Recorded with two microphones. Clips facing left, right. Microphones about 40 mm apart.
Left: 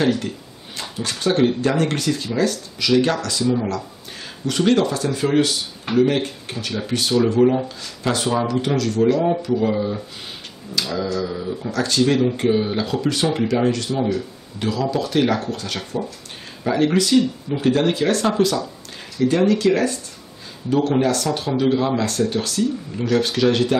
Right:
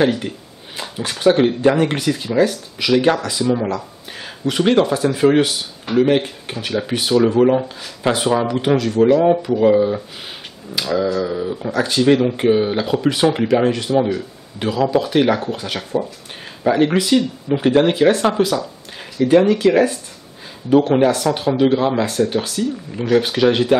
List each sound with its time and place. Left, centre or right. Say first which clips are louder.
0.0 s speech: right 3 dB; centre
0.7 s a sound: right 2 dB; centre
1.2 s speech: right 5 dB; centre
18.3 s speech: right 1 dB; centre
19.2 s speech: right 4 dB; centre